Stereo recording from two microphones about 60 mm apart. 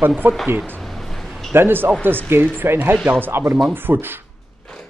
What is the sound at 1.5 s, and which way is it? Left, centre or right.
Speech, right.